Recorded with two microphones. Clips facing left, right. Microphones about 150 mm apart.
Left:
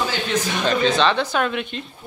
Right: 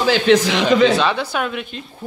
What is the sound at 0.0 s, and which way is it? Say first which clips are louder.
Speech: right 9 dB; 85° right.